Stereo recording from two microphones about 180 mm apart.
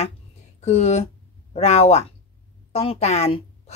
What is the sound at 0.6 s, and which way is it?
Speech, 40° left (ahead or behind).